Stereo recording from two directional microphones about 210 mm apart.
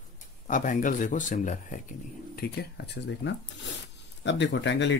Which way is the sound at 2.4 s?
55° left (ahead or behind).